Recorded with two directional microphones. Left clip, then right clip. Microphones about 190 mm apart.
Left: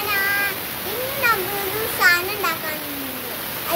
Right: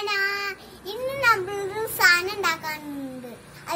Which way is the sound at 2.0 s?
10° left (ahead or behind).